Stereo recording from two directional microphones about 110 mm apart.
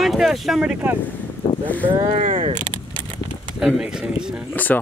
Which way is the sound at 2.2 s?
90° right.